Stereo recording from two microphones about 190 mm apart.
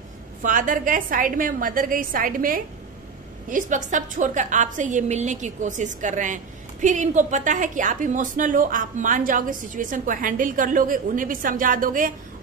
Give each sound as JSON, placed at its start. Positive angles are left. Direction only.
{"t": 0.4, "sound": "a woman's voice", "side_deg": -45}